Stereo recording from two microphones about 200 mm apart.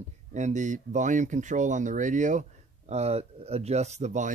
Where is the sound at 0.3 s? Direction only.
35° right (ahead or behind).